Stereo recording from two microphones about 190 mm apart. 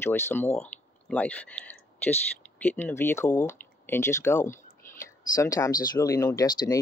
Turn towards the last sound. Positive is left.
turn(degrees=20)  # may be behind; listen again after turning